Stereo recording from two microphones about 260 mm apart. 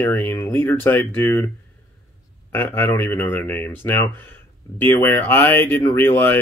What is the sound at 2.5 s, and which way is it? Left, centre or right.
Speech, centre.